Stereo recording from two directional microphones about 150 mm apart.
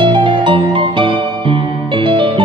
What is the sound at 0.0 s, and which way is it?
Music, 30° right (ahead or behind).